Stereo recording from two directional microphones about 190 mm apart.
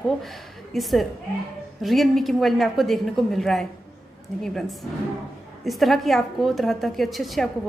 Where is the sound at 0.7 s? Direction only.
Centre (ahead or behind).